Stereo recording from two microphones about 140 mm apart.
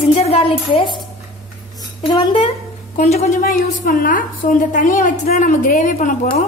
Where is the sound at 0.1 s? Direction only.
45° left (ahead or behind).